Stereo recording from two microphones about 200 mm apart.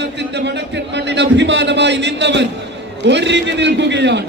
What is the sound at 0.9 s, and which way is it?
A man's voice, 60° right (ahead or behind).